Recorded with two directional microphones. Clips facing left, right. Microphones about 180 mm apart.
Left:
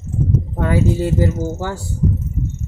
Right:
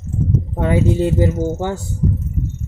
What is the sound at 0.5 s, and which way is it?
Speech, 20° right (ahead or behind).